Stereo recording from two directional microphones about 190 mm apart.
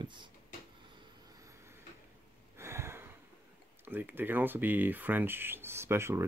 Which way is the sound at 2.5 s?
15° right (ahead or behind).